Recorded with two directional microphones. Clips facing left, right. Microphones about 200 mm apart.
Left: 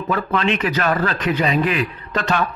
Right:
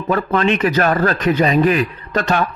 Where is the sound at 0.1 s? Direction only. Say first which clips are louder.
Right 4 dB; 45° right (ahead or behind).